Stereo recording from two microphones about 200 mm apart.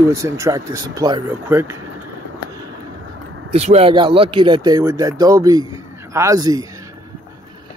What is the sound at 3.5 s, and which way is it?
A man's voice, 30° right (ahead or behind).